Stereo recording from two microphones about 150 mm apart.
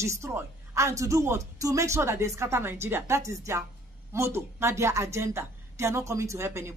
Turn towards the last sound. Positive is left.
turn(degrees=-20)  # may be behind; listen again after turning